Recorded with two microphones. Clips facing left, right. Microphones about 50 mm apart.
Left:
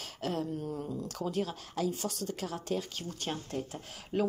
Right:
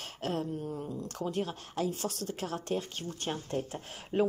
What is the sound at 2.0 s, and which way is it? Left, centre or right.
Speech, right.